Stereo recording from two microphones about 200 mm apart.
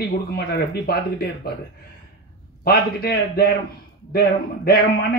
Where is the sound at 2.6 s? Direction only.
50° left (ahead or behind).